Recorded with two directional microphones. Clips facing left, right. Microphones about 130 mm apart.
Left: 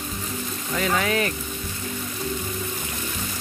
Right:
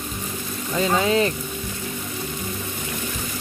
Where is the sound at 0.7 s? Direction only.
25° right (ahead or behind).